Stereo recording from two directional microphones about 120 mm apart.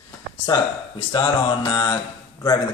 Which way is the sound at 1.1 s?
40° left (ahead or behind).